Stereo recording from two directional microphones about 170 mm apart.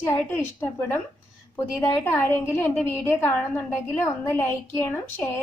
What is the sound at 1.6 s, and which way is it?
A woman's voice, 15° left (ahead or behind).